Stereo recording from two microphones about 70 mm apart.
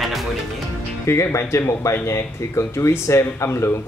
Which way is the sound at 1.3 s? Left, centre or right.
Left.